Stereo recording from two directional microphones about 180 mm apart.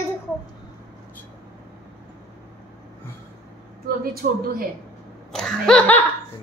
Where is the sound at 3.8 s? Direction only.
55° right (ahead or behind).